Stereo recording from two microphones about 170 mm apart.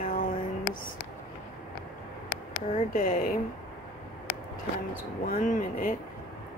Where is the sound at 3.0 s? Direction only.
55° left (ahead or behind).